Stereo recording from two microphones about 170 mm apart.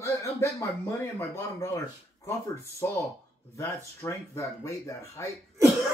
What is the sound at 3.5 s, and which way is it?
Speech, 15° left (ahead or behind).